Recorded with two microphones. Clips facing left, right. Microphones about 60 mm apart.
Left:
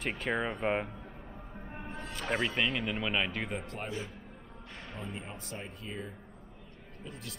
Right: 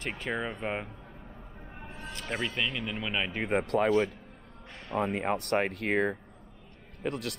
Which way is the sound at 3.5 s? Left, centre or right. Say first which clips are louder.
Right 10 dB; right.